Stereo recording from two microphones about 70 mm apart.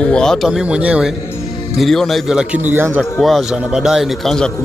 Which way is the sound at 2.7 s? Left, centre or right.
Right.